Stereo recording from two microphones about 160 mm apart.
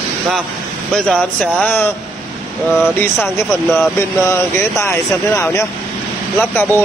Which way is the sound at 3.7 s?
15° left (ahead or behind).